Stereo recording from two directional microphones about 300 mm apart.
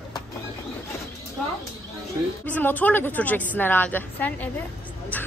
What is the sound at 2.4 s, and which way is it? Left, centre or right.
Speech, centre.